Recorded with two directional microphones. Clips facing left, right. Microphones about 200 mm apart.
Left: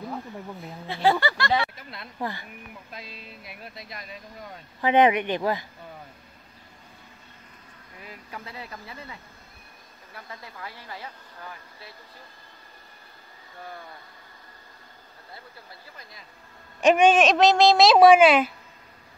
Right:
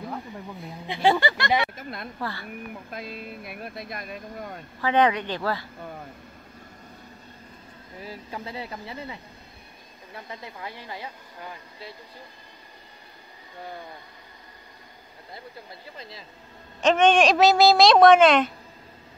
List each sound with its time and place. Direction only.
0.8 s speech: 15° right (ahead or behind)
1.8 s speech: 50° right (ahead or behind)
2.1 s speech: 15° left (ahead or behind)
2.7 s speech: 50° right (ahead or behind)
4.8 s speech: 20° left (ahead or behind)
8.0 s speech: 30° right (ahead or behind)
13.7 s speech: 20° right (ahead or behind)
15.3 s speech: 20° right (ahead or behind)
16.8 s speech: 10° left (ahead or behind)